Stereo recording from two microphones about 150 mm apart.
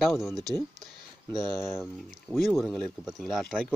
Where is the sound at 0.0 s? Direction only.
Centre (ahead or behind).